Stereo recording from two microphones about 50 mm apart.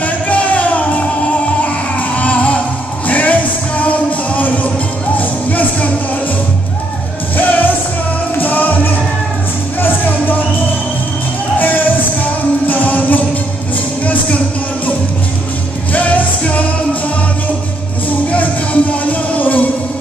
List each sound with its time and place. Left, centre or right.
0.0 s music: left
7.3 s music: left
11.5 s music: left
15.9 s music: left
18.3 s music: left